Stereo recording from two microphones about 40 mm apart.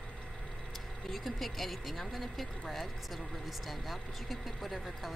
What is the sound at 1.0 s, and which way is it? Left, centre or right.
Speech, centre.